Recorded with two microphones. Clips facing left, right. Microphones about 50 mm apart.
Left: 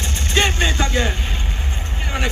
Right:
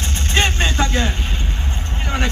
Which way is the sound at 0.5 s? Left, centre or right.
Right.